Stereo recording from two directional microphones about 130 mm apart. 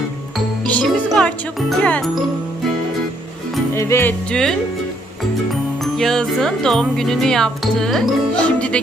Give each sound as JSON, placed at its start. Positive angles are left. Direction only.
{"t": 0.7, "sound": "speech", "side_deg": 10}
{"t": 3.7, "sound": "music", "side_deg": 20}
{"t": 4.3, "sound": "music", "side_deg": 5}